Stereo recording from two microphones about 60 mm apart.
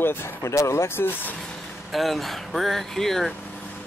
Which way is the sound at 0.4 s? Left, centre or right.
Left.